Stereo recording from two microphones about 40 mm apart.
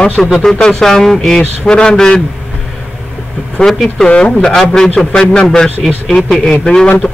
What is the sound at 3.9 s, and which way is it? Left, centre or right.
Speech, left.